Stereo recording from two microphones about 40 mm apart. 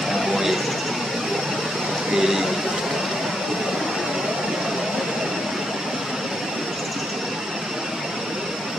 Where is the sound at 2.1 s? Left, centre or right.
Centre.